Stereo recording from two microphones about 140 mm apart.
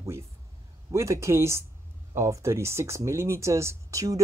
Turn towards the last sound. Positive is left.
turn(degrees=-25)  # may be behind; listen again after turning